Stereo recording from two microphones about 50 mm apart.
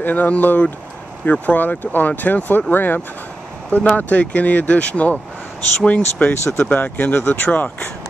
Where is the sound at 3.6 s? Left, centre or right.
Left.